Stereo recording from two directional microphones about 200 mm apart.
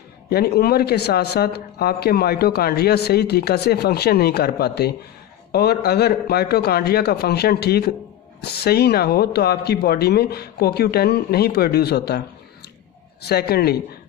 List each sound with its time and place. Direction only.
0.3 s speech: 50° left (ahead or behind)
13.2 s speech: 50° left (ahead or behind)